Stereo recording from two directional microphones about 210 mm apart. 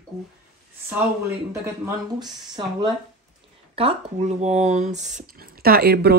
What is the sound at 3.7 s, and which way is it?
Speech, 30° right (ahead or behind).